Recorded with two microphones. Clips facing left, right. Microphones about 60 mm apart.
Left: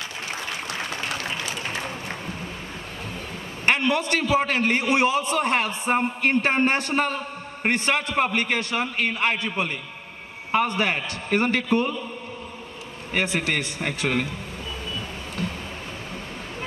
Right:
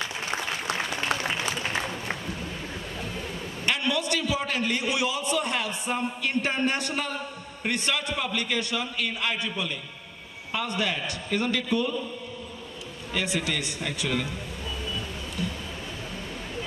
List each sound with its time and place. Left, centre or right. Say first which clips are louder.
3.6 s a man's voice: left 5 dB; left
13.1 s a man's voice: left 4 dB; left